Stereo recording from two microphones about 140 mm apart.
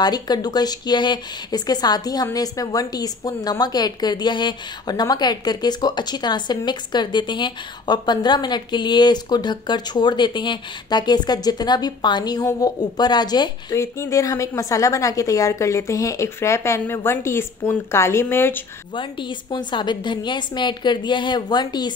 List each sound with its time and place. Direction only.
0.0 s a woman's voice: 30° left (ahead or behind)
18.9 s a woman's voice: 35° left (ahead or behind)